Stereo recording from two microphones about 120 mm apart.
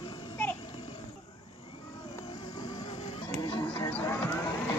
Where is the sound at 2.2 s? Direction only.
35° left (ahead or behind).